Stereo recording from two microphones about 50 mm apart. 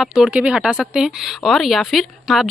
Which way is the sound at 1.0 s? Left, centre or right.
Centre.